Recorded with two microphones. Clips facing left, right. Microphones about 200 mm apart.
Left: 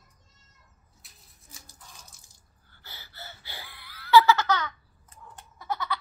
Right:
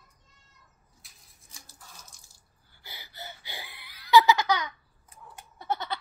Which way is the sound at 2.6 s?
10° right (ahead or behind).